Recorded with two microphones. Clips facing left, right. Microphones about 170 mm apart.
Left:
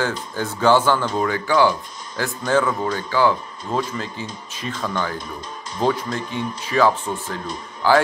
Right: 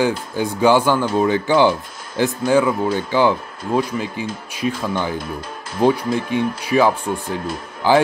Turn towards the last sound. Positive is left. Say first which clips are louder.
# right 1 dB
turn(degrees=-15)  # may be behind; listen again after turning